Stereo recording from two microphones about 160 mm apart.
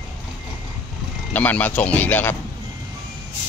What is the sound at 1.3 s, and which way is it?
Speech, 10° left (ahead or behind).